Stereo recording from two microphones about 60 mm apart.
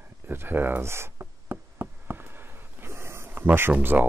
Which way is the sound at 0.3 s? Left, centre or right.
Right.